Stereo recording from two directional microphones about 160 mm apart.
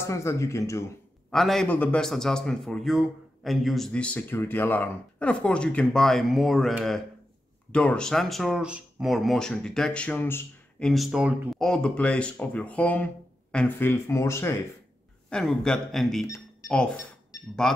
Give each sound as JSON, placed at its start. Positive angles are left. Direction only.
{"t": 0.0, "sound": "speech", "side_deg": 20}
{"t": 1.3, "sound": "a man's voice", "side_deg": 0}
{"t": 7.7, "sound": "a man's voice", "side_deg": 5}
{"t": 10.9, "sound": "speech", "side_deg": 0}
{"t": 15.2, "sound": "a man's voice", "side_deg": 5}
{"t": 17.6, "sound": "a man's voice", "side_deg": 5}